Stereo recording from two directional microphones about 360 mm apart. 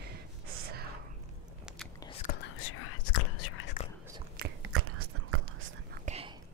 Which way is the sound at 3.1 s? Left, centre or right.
Left.